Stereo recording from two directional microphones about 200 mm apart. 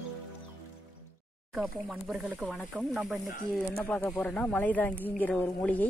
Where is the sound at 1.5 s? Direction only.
5° right (ahead or behind).